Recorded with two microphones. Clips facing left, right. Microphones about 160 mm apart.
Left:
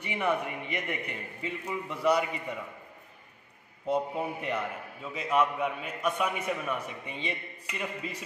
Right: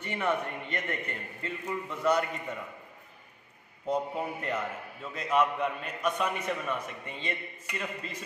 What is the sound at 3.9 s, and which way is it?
A man's voice, 5° left (ahead or behind).